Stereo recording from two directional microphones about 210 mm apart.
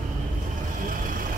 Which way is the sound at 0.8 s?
40° right (ahead or behind).